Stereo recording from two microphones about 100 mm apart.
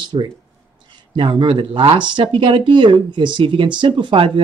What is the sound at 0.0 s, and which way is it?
Speech, 50° right (ahead or behind).